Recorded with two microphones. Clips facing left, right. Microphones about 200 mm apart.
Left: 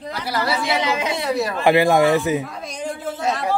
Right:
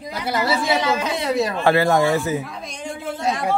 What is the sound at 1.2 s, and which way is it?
Speech, 20° right (ahead or behind).